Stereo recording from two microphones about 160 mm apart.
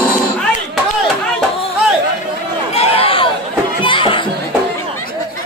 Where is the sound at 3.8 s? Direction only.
30° left (ahead or behind).